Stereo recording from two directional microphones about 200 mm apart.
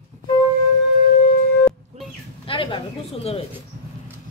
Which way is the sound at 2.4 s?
25° left (ahead or behind).